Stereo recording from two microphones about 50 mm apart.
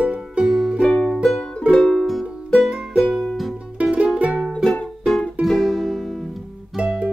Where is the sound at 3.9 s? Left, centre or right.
Right.